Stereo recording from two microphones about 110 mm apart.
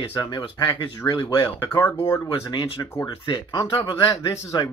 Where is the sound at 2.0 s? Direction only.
35° left (ahead or behind).